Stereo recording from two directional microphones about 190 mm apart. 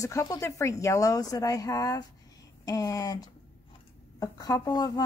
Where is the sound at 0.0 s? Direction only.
15° left (ahead or behind).